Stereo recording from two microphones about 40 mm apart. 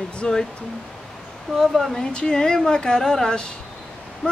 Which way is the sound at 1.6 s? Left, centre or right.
Centre.